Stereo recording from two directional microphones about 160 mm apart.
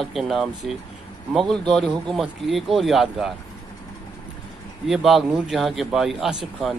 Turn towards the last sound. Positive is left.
turn(degrees=-5)  # may be behind; listen again after turning